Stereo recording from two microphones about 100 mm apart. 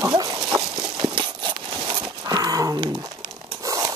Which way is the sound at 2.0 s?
40° right (ahead or behind).